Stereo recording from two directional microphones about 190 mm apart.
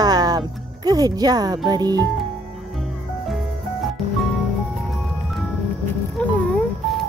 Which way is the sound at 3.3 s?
Centre (ahead or behind).